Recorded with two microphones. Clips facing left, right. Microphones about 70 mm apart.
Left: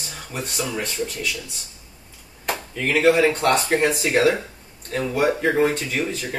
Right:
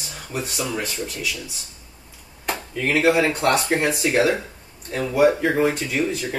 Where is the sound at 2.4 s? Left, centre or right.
Centre.